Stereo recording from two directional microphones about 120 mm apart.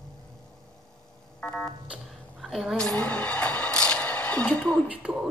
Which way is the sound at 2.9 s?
10° left (ahead or behind).